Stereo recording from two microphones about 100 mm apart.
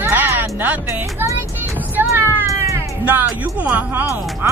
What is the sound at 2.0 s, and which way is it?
Music, 20° right (ahead or behind).